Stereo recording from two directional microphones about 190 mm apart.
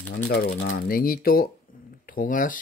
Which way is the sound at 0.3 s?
55° left (ahead or behind).